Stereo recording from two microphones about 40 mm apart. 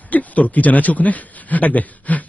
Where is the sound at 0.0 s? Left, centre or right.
Left.